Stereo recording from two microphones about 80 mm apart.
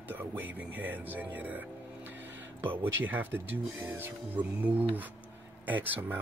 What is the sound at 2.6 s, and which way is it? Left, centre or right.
Speech, right.